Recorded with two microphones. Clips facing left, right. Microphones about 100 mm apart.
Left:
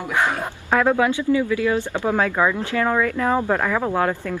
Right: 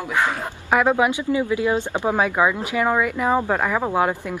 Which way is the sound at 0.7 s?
15° right (ahead or behind).